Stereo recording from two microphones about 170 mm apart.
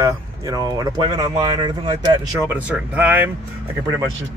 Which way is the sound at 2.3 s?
10° right (ahead or behind).